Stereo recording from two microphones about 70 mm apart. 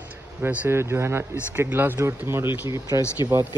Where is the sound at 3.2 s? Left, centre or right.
Right.